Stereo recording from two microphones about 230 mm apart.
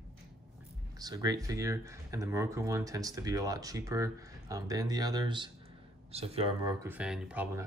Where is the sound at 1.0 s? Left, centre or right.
Centre.